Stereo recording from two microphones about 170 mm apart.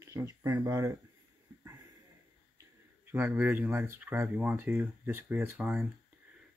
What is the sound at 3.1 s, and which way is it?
Speech, 10° right (ahead or behind).